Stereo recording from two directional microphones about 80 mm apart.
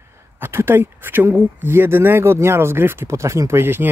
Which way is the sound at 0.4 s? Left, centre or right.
Right.